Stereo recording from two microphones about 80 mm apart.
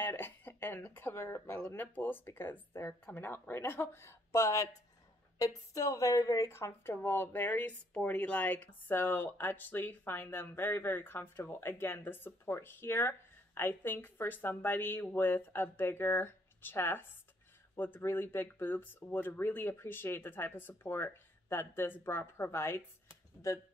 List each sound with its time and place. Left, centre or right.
0.0 s speech: left
5.7 s speech: left